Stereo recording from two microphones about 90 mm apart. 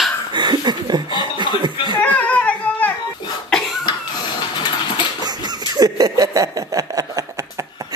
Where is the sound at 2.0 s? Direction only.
15° left (ahead or behind).